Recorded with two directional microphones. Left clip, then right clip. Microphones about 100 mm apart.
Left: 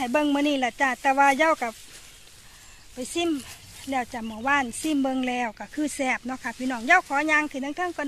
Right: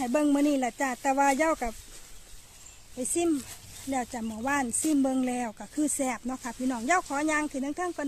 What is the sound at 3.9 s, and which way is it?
Speech, 20° right (ahead or behind).